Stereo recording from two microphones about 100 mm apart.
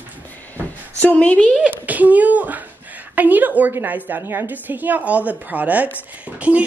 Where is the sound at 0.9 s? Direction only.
15° left (ahead or behind).